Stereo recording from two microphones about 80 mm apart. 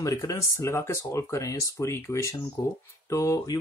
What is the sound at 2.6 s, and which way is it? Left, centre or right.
Speech, left.